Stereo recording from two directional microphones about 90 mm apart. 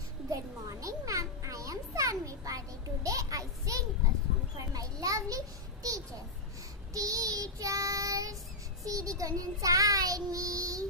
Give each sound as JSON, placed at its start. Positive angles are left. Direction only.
{"t": 0.3, "sound": "children playing", "side_deg": -40}
{"t": 4.6, "sound": "a sound", "side_deg": -40}
{"t": 6.9, "sound": "child singing", "side_deg": -40}